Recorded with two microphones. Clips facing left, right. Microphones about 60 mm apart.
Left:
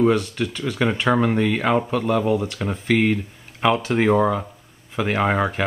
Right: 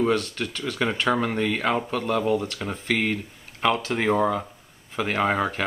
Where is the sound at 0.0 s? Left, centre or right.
Centre.